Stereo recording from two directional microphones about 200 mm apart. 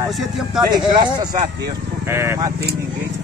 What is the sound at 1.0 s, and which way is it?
Speech, 20° right (ahead or behind).